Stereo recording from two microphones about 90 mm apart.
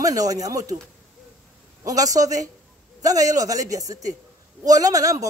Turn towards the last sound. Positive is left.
turn(degrees=-40)  # may be behind; listen again after turning